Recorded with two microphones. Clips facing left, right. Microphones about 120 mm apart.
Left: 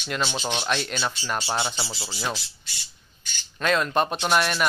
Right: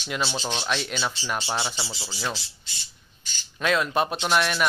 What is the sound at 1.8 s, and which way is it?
Speech, 25° left (ahead or behind).